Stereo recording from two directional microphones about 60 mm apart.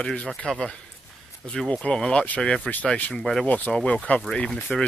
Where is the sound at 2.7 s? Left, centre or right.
Left.